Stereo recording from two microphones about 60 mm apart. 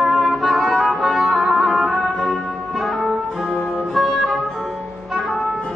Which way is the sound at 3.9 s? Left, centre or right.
Centre.